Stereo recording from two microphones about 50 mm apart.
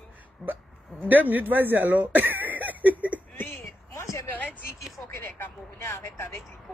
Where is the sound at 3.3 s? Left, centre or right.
Left.